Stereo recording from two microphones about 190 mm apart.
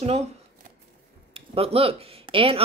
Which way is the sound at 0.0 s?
35° right (ahead or behind).